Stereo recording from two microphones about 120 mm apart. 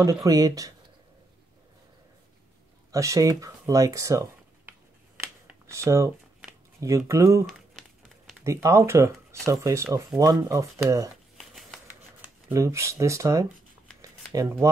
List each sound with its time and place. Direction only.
0.0 s speech: 30° right (ahead or behind)
2.9 s speech: 25° right (ahead or behind)
8.5 s speech: 25° right (ahead or behind)
11.3 s a sound: centre (ahead or behind)
11.9 s shuffling cards: 15° right (ahead or behind)
12.5 s speech: 25° right (ahead or behind)
14.0 s shuffling cards: 25° right (ahead or behind)